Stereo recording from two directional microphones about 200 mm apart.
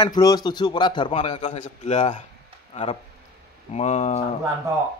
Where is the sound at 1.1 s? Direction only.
35° left (ahead or behind).